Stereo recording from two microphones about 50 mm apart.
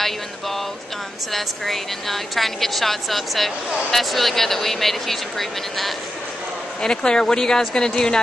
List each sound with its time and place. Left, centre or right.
1.3 s a woman's voice: centre
6.8 s speech: centre